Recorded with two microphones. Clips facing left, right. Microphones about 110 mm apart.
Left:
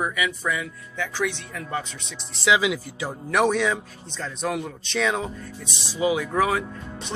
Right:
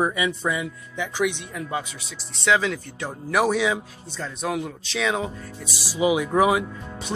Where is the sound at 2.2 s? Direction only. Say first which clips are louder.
Even; centre (ahead or behind).